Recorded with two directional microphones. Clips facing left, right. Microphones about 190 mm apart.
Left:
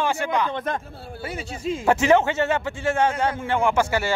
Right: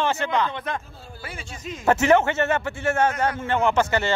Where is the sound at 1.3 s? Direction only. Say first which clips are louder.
Left 9 dB; 35° left (ahead or behind).